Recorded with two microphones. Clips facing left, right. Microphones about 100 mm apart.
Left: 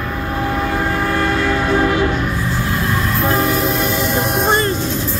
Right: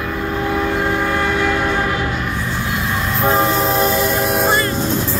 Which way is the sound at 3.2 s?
25° right (ahead or behind).